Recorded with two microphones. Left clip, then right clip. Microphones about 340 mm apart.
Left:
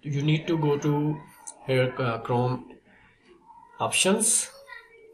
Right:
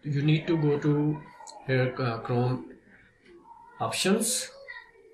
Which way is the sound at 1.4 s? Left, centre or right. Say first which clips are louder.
Left 3 dB; centre.